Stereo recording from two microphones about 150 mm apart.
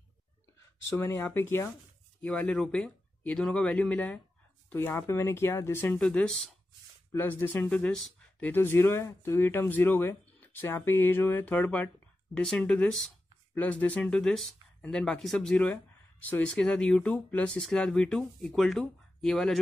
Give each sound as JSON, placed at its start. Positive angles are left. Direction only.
{"t": 0.9, "sound": "speech", "side_deg": 15}